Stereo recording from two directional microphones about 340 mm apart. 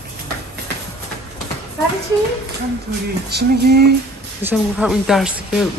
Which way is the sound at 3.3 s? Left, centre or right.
Right.